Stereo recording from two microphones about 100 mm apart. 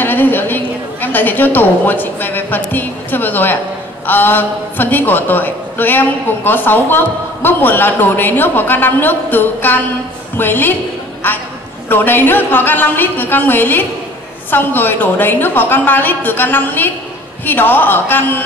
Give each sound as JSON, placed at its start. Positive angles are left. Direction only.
{"t": 0.0, "sound": "a woman's voice", "side_deg": 20}